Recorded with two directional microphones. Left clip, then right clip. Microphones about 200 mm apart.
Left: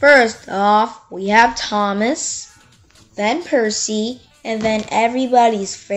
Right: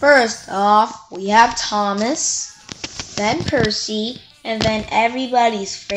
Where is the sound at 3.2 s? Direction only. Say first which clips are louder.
Left 1 dB; 40° left (ahead or behind).